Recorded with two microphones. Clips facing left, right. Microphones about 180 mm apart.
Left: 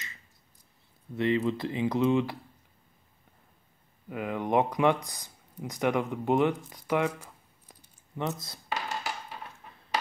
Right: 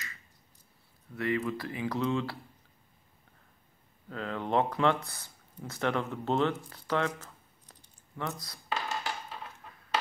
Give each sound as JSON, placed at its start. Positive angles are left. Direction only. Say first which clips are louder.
{"t": 1.1, "sound": "speech", "louder": "left 4 dB", "side_deg": 25}
{"t": 4.1, "sound": "speech", "louder": "left 3 dB", "side_deg": 15}
{"t": 8.2, "sound": "speech", "louder": "left 4 dB", "side_deg": 25}
{"t": 8.6, "sound": "music", "louder": "left 1 dB", "side_deg": 10}